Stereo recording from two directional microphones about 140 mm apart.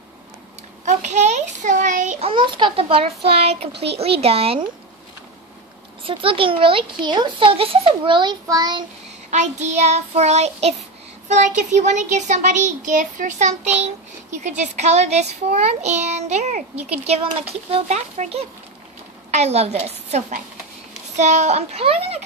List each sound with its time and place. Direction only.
0.8 s a sound: 55° right (ahead or behind)
2.1 s a child's voice: 40° right (ahead or behind)
6.0 s a child's voice: 40° right (ahead or behind)
9.3 s a child's voice: 55° right (ahead or behind)